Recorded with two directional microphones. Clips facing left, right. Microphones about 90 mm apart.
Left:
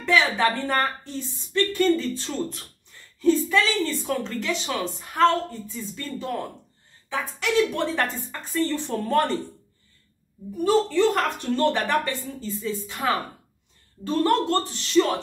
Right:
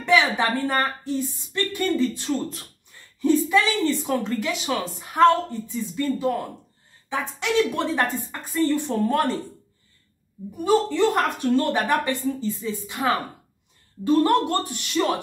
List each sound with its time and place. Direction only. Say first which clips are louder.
0.0 s speech: right 1 dB; 15° right (ahead or behind)
0.7 s a woman's voice: right 1 dB; 5° right (ahead or behind)
10.6 s a woman's voice: even; 15° right (ahead or behind)
14.0 s a woman's voice: right 3 dB; 15° right (ahead or behind)